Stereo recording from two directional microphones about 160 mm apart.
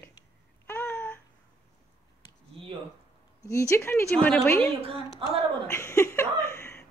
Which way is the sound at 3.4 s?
20° left (ahead or behind).